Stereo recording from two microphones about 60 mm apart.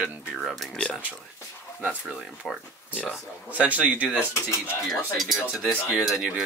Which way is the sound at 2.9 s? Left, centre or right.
Left.